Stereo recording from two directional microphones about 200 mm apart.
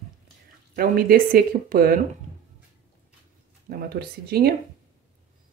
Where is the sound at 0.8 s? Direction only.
45° right (ahead or behind).